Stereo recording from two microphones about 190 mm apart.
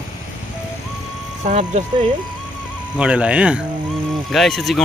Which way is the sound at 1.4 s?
40° right (ahead or behind).